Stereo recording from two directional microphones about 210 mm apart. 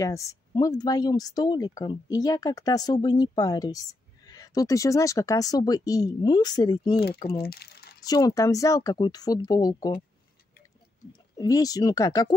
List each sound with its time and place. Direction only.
0.0 s speech: 15° left (ahead or behind)
7.2 s speech: 50° left (ahead or behind)
8.0 s speech: 15° left (ahead or behind)
11.3 s speech: 15° left (ahead or behind)